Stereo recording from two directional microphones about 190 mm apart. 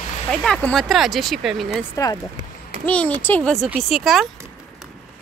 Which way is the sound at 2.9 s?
10° left (ahead or behind).